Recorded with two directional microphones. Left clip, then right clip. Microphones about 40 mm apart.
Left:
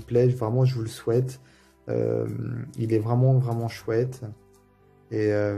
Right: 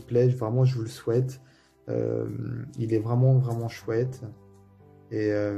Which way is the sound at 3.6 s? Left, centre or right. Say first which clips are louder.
Left 2 dB; left.